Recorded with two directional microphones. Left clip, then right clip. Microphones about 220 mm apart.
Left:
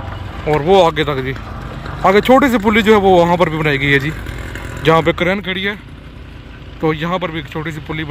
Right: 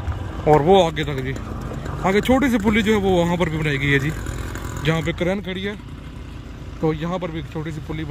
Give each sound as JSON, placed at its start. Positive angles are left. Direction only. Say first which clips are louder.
{"t": 0.5, "sound": "speech", "louder": "left 3 dB", "side_deg": -15}
{"t": 6.8, "sound": "speech", "louder": "left 6 dB", "side_deg": -5}